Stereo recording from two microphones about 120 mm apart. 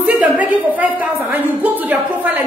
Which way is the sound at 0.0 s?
10° right (ahead or behind).